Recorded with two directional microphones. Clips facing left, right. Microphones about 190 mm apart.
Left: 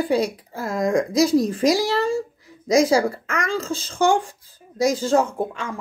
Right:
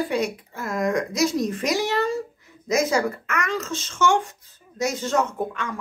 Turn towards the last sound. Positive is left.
turn(degrees=30)  # may be behind; listen again after turning